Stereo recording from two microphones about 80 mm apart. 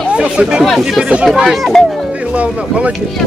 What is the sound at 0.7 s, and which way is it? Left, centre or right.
Speech, centre.